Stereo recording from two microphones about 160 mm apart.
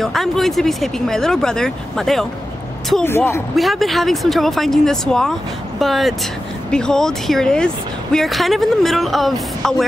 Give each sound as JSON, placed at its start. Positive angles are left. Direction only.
{"t": 0.0, "sound": "speech", "side_deg": 0}
{"t": 3.0, "sound": "speech", "side_deg": 15}
{"t": 3.5, "sound": "speech", "side_deg": 0}